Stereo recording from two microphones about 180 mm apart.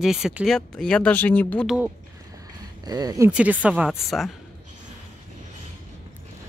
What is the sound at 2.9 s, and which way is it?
Speech, 20° right (ahead or behind).